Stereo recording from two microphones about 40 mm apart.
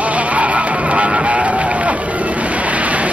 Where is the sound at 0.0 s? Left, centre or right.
Right.